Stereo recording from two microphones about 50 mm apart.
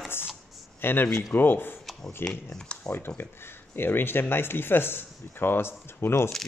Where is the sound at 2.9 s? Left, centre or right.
Left.